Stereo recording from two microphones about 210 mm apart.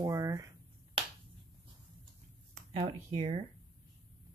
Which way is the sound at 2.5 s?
30° right (ahead or behind).